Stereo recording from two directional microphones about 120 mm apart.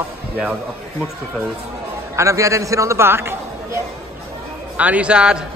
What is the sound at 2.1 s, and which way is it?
A man's voice, 25° right (ahead or behind).